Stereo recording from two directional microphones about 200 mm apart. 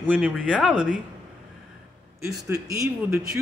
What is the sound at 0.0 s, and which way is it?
Speech, 5° right (ahead or behind).